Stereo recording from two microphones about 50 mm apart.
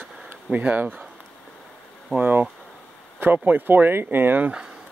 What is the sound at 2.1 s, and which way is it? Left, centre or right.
Speech, right.